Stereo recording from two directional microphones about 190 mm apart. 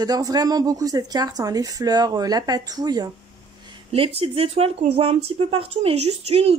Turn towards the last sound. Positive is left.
turn(degrees=-30)  # may be behind; listen again after turning